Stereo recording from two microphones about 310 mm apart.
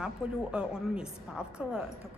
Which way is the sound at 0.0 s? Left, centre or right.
Centre.